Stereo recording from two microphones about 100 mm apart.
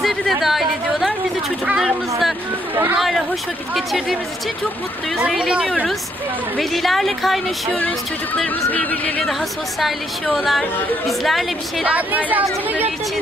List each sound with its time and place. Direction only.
0.0 s a sound: centre (ahead or behind)
1.8 s speech: centre (ahead or behind)
5.2 s a woman's voice: 5° right (ahead or behind)
9.8 s speech: centre (ahead or behind)
11.8 s a woman's voice: 15° right (ahead or behind)